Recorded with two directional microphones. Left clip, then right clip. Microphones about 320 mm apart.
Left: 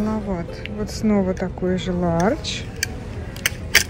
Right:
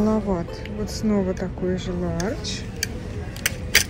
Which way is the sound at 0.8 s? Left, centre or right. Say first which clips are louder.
Left 3 dB; centre.